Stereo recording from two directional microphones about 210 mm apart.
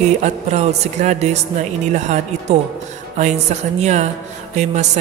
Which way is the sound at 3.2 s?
35° right (ahead or behind).